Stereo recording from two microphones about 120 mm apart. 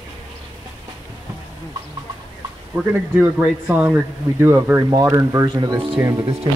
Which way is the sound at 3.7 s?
20° right (ahead or behind).